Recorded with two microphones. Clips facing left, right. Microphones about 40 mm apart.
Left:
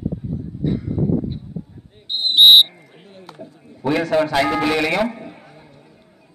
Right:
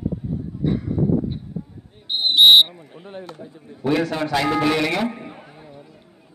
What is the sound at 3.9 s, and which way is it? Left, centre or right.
A man's voice, centre.